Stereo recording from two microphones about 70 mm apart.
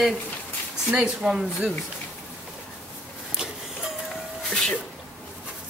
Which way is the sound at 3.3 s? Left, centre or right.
Centre.